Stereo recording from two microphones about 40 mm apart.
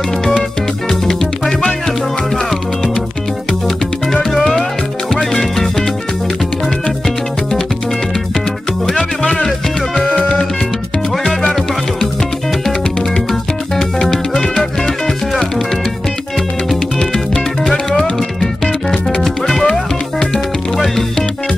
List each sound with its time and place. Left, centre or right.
0.8 s music: centre
3.6 s music: centre
14.3 s music: left
14.6 s music: centre
19.2 s music: centre
19.6 s music: centre